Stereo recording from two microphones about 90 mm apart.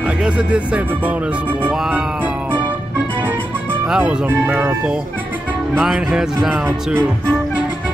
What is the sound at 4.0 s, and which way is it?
Speech, 10° right (ahead or behind).